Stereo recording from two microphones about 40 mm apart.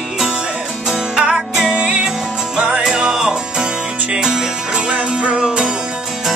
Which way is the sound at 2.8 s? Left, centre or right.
Centre.